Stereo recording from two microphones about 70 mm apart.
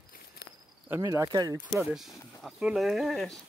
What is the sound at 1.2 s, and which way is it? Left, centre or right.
Speech, right.